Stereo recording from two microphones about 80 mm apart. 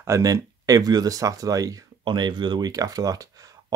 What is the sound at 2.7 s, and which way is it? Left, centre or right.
Speech, right.